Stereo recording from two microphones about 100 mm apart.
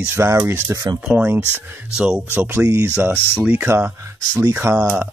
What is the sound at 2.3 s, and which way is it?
Speech, 20° right (ahead or behind).